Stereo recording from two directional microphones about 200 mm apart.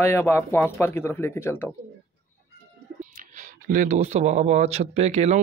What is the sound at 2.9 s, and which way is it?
Speech, 40° right (ahead or behind).